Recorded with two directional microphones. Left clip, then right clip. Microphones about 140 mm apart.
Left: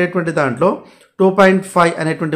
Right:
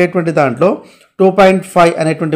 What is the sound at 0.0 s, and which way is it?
Speech, 25° right (ahead or behind).